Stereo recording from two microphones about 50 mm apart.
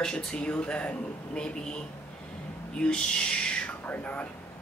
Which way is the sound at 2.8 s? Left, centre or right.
Centre.